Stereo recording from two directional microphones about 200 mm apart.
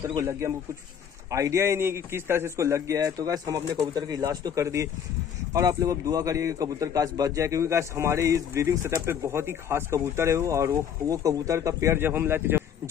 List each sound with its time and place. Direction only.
0.1 s a man's voice: 15° right (ahead or behind)